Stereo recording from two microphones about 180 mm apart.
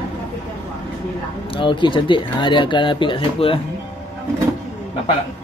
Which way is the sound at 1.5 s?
30° left (ahead or behind).